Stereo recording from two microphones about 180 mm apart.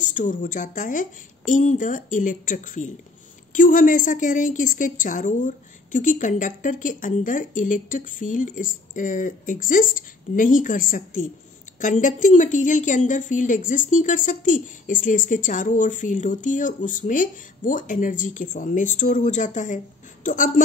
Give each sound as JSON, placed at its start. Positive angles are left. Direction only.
{"t": 0.0, "sound": "a woman's voice", "side_deg": 45}